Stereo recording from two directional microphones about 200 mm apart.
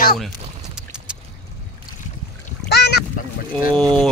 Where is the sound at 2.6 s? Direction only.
55° left (ahead or behind).